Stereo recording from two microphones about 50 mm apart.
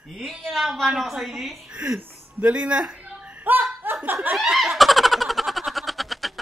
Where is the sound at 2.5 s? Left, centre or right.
Right.